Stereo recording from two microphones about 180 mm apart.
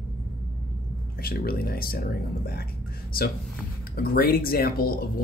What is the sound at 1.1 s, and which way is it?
Speech, 55° left (ahead or behind).